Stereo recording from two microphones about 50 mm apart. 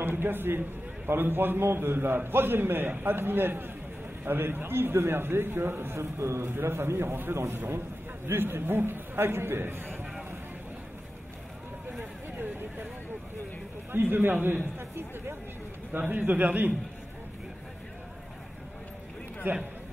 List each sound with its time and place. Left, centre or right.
0.0 s a man's voice: right
6.4 s a man's voice: right
12.0 s a sound: right
13.9 s a man's voice: right
16.1 s a man's voice: right
19.4 s a man's voice: right